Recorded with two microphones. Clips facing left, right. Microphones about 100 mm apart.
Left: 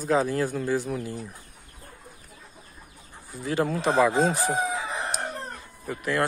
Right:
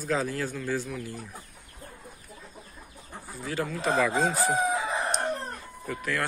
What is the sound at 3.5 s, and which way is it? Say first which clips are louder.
Speech: left 6 dB; 40° left (ahead or behind).